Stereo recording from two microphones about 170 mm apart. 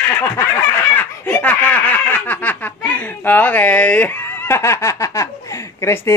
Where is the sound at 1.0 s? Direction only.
10° left (ahead or behind).